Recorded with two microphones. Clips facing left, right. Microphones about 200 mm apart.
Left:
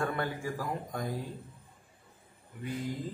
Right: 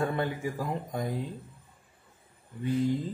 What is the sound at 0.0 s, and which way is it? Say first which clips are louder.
Speech: right 3 dB; 20° right (ahead or behind).